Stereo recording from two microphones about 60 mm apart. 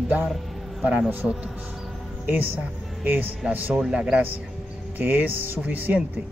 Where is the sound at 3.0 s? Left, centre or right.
Right.